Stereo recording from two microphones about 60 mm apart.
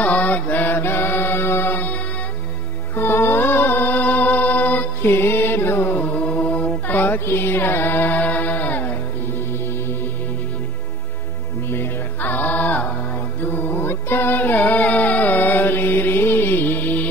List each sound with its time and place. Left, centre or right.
0.0 s chant: left
3.0 s music: left
5.1 s music: left
6.1 s music: left
12.2 s music: left
13.6 s music: left